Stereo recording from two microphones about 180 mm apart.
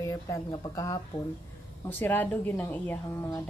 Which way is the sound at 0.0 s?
20° left (ahead or behind).